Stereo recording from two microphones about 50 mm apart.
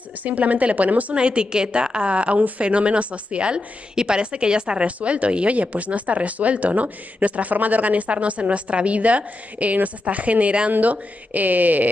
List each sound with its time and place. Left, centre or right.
0.2 s speech: right
1.1 s a woman's voice: centre